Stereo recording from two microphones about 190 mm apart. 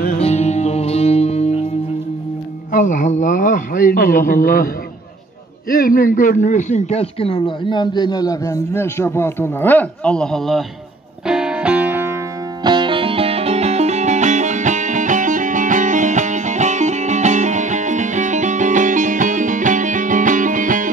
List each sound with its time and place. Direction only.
0.2 s music: 35° left (ahead or behind)
2.7 s speech: 40° left (ahead or behind)
5.7 s speech: 50° left (ahead or behind); by 10.6 s centre (ahead or behind)
11.2 s music: 5° right (ahead or behind)
12.6 s music: 25° right (ahead or behind); by 20.9 s 45° right (ahead or behind)